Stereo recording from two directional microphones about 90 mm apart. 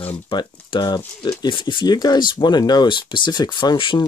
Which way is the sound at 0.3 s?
55° left (ahead or behind).